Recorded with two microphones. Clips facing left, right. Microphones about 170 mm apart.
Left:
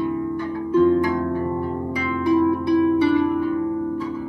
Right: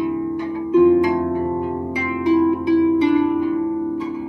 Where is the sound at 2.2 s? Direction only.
15° right (ahead or behind).